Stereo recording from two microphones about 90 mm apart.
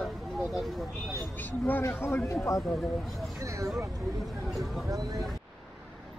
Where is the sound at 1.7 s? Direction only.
25° left (ahead or behind).